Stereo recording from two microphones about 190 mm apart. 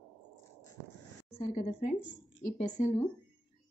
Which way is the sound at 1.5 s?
40° left (ahead or behind).